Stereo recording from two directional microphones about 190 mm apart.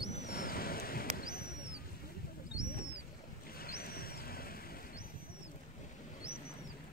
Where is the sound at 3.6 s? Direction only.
55° left (ahead or behind).